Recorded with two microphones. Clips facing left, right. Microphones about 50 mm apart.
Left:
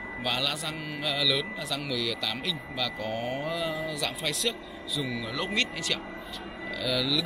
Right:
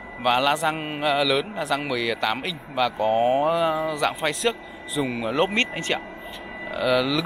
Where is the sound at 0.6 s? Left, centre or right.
Right.